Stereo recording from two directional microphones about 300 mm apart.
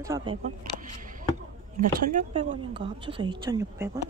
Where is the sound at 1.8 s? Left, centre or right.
Right.